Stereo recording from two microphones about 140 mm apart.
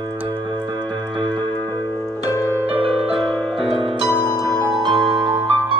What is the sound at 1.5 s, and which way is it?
Music, 15° left (ahead or behind).